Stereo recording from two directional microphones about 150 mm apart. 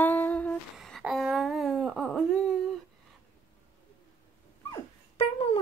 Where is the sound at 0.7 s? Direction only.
Centre (ahead or behind).